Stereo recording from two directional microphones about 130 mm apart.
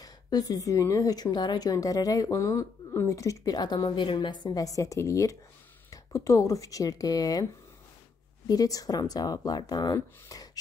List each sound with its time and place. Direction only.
0.0 s a woman's voice: 30° left (ahead or behind)
8.5 s a woman's voice: 25° left (ahead or behind)